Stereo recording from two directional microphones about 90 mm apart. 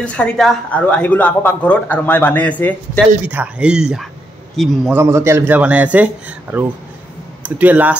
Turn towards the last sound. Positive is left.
turn(degrees=-20)  # may be behind; listen again after turning